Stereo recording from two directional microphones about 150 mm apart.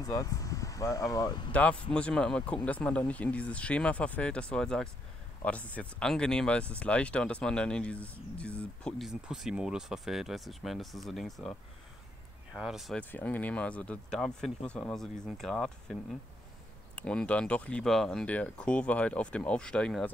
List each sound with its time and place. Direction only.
0.0 s speech: 25° left (ahead or behind)
1.5 s speech: 10° left (ahead or behind)
12.5 s speech: centre (ahead or behind)
13.1 s speech: 10° left (ahead or behind)